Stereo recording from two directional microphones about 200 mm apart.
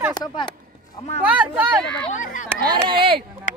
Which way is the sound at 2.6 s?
20° right (ahead or behind).